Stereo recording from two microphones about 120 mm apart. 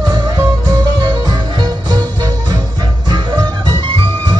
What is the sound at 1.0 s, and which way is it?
Music, 35° right (ahead or behind).